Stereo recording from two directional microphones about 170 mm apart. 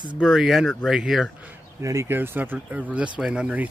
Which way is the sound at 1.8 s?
15° right (ahead or behind).